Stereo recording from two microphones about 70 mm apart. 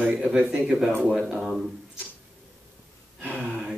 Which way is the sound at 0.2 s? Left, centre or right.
Centre.